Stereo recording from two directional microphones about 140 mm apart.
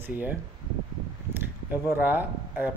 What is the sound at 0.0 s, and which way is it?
Speech, 15° right (ahead or behind).